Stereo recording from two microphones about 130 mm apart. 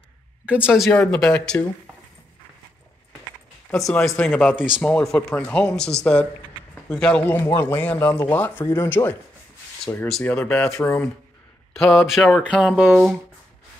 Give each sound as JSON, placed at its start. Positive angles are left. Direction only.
{"t": 0.5, "sound": "speech", "side_deg": -10}
{"t": 0.9, "sound": "speech", "side_deg": 5}
{"t": 3.7, "sound": "speech", "side_deg": 5}
{"t": 11.7, "sound": "speech", "side_deg": 0}